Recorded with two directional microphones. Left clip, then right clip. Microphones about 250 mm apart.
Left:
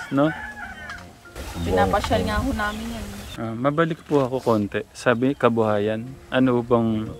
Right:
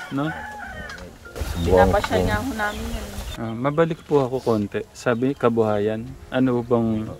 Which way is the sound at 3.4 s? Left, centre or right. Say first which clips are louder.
Right 1 dB; centre.